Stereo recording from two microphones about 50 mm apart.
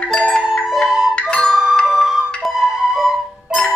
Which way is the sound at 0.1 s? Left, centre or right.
Left.